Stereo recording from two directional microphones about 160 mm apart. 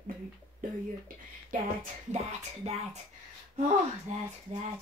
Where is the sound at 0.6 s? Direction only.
60° right (ahead or behind).